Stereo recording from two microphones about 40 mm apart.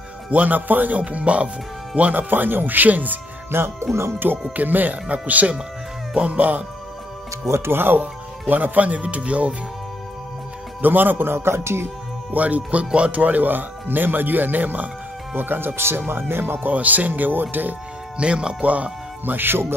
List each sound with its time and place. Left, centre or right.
0.3 s speech: right
1.0 s speech: right
2.2 s speech: right
3.5 s a man's voice: right
4.2 s speech: right
7.6 s speech: right
10.8 s a man's voice: right
12.3 s speech: right
12.8 s speech: right
13.1 s speech: right
15.3 s a man's voice: right
16.6 s speech: right
18.1 s speech: right
19.2 s speech: right